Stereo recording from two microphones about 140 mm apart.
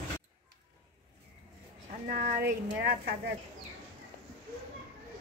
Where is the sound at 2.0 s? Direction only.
75° right (ahead or behind); by 3.1 s 90° right.